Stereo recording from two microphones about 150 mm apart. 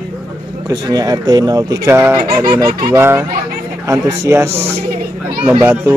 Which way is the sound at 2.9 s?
15° right (ahead or behind).